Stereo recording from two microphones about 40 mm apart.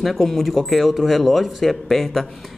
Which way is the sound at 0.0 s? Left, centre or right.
Centre.